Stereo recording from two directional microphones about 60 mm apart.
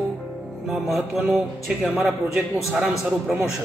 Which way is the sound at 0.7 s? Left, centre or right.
Centre.